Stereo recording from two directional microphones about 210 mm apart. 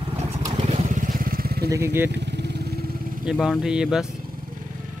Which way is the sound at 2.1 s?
55° right (ahead or behind).